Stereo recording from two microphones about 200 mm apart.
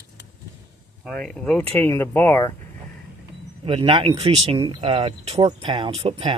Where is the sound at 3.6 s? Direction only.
25° right (ahead or behind).